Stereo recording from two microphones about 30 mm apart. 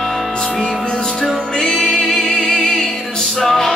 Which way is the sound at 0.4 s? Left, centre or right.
Left.